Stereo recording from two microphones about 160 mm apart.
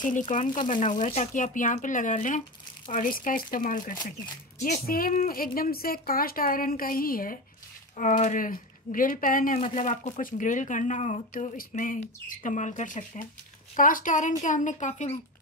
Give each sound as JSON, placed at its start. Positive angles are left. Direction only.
{"t": 0.0, "sound": "a woman's voice", "side_deg": 55}
{"t": 8.0, "sound": "a woman's voice", "side_deg": 50}
{"t": 9.6, "sound": "speech", "side_deg": 50}